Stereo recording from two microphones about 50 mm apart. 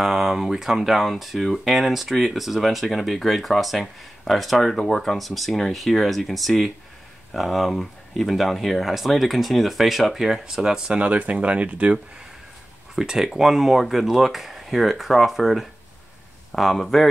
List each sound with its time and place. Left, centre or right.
0.0 s speech: centre
11.0 s speech: right
12.9 s speech: centre